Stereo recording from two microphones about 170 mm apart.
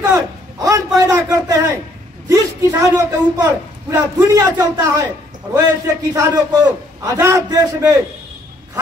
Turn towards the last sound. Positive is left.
turn(degrees=-20)  # may be behind; listen again after turning